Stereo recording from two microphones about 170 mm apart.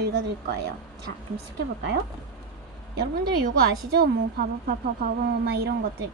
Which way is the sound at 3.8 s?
75° right (ahead or behind).